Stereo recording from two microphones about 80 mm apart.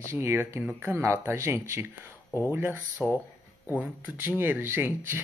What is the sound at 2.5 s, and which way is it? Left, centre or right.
Speech, right.